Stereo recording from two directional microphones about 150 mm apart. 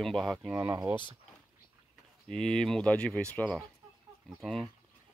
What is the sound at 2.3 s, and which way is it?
Speech, 5° left (ahead or behind).